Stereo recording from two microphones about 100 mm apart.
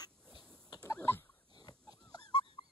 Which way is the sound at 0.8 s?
25° left (ahead or behind).